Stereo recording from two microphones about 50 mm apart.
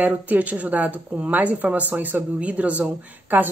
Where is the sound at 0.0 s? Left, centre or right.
Right.